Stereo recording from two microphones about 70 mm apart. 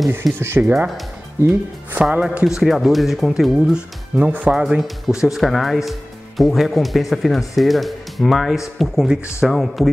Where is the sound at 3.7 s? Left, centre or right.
Centre.